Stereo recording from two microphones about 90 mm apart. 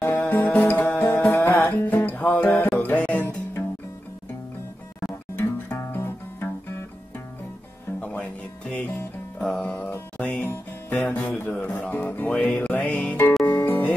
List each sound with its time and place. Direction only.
0.0 s music: 25° left (ahead or behind)
5.3 s music: 25° left (ahead or behind)
8.0 s music: 15° left (ahead or behind)